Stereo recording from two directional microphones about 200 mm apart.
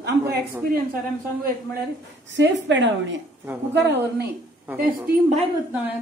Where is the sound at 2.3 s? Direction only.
65° right (ahead or behind).